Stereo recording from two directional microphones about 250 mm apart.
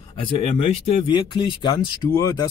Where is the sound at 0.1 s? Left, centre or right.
Left.